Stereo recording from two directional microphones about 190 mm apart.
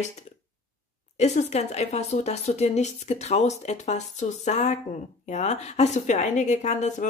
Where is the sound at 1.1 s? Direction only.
35° left (ahead or behind).